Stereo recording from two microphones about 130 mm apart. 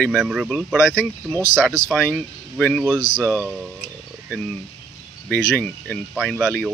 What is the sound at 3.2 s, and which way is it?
Speech, 20° right (ahead or behind).